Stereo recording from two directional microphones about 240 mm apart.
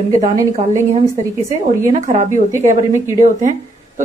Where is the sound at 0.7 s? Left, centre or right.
Right.